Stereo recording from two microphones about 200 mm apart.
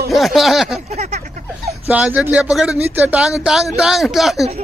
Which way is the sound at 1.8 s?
10° right (ahead or behind).